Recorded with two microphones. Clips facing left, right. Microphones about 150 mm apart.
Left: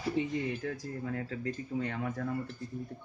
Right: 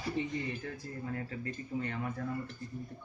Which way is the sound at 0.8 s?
85° left.